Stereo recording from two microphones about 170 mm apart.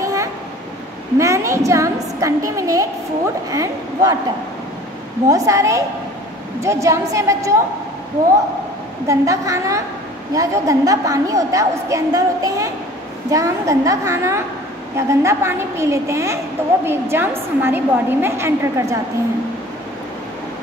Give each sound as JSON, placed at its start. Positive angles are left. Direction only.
{"t": 0.0, "sound": "a sound", "side_deg": -20}
{"t": 1.1, "sound": "a woman's voice", "side_deg": -15}
{"t": 5.3, "sound": "a woman's voice", "side_deg": -20}
{"t": 9.0, "sound": "a woman's voice", "side_deg": -20}